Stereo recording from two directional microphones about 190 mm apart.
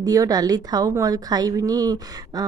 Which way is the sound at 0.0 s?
20° right (ahead or behind).